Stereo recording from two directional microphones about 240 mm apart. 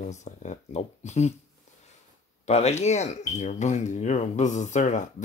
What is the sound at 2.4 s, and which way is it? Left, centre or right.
Speech, left.